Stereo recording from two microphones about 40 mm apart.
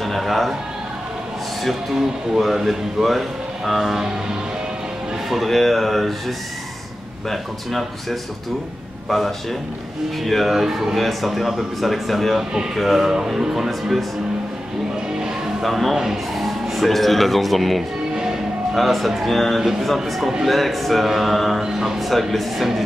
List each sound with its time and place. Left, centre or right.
0.0 s a man's voice: centre
2.0 s speech: centre
5.3 s speech: centre
10.2 s speech: centre
11.0 s speech: centre
13.1 s speech: centre
15.6 s speech: centre
18.1 s music: centre
18.8 s speech: centre